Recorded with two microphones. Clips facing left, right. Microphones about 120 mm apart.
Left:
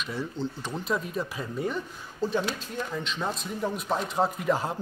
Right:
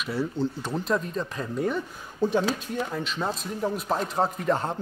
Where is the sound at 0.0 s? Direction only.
5° right (ahead or behind).